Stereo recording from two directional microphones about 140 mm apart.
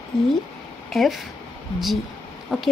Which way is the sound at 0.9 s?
Centre (ahead or behind).